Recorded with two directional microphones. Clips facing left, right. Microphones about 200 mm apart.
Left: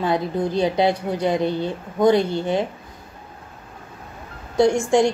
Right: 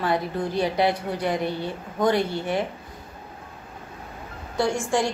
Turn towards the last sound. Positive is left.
turn(degrees=20)  # may be behind; listen again after turning